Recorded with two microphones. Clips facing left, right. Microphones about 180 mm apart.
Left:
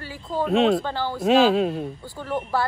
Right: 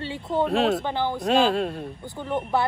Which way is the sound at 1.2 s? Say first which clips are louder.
Left 5 dB; centre (ahead or behind).